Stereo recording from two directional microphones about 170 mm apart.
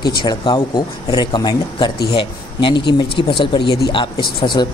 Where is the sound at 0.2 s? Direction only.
25° left (ahead or behind).